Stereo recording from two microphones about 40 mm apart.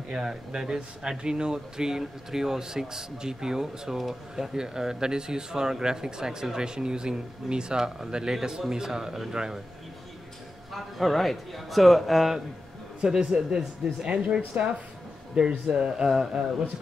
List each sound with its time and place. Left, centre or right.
0.2 s speech: centre
10.7 s a man's voice: centre
13.0 s speech: right